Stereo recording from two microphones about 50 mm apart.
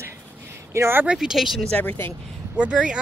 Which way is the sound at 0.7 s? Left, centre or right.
Right.